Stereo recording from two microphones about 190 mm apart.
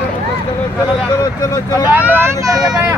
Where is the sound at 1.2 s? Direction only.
20° left (ahead or behind).